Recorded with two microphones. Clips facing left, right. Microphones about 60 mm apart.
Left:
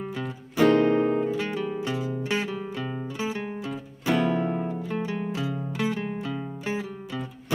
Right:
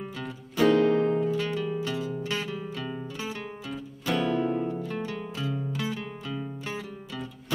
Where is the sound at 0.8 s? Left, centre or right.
Centre.